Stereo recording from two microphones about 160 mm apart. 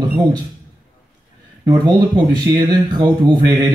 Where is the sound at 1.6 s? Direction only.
25° right (ahead or behind).